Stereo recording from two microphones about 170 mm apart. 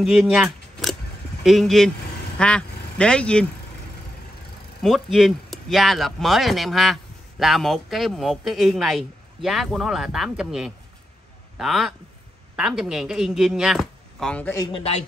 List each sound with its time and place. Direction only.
0.0 s a sound: centre (ahead or behind)
1.4 s speech: centre (ahead or behind)
4.8 s a man's voice: centre (ahead or behind)
14.6 s speech: 30° left (ahead or behind)